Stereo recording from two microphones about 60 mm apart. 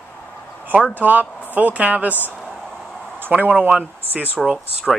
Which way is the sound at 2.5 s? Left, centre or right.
Centre.